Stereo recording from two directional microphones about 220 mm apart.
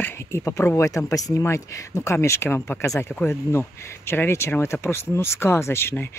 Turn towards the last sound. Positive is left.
turn(degrees=10)  # may be behind; listen again after turning